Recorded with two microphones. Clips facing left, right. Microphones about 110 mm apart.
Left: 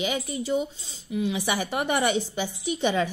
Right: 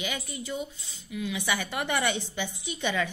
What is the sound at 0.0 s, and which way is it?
A woman's voice, 30° left (ahead or behind).